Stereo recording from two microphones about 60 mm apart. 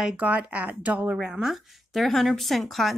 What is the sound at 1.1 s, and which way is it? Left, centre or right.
Speech, centre.